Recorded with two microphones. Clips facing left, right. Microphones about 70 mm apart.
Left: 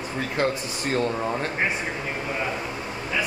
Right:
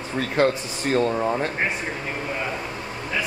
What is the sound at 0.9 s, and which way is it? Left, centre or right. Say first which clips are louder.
Speech: right 4 dB; centre.